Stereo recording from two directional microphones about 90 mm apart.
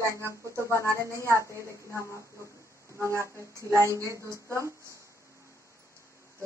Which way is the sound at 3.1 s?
30° right (ahead or behind).